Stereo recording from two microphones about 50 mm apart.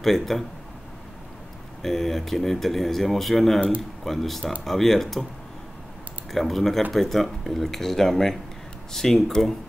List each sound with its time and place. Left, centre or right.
0.0 s speech: centre
1.8 s speech: centre
6.3 s speech: centre